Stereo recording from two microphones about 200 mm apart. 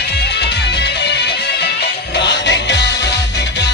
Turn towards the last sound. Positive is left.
turn(degrees=60)  # may be behind; listen again after turning